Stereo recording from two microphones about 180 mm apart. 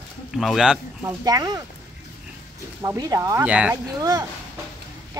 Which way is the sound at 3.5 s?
5° right (ahead or behind).